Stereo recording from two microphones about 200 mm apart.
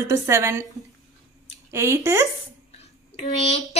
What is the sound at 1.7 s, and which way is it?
Speech, 15° right (ahead or behind).